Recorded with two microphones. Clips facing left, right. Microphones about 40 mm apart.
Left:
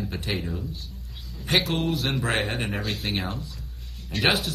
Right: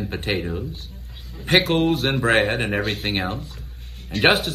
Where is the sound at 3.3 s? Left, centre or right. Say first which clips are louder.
Right 4 dB; right.